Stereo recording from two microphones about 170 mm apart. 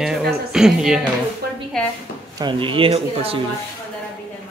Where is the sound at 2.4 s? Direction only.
30° right (ahead or behind).